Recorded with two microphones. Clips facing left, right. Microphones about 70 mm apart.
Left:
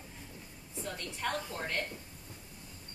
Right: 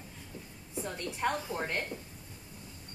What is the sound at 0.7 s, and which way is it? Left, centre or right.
Speech, right.